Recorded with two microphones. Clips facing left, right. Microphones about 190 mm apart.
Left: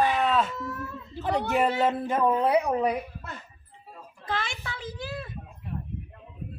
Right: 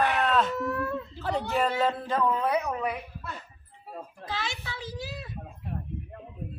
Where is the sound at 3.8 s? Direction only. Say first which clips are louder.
Right 6 dB; 60° right (ahead or behind).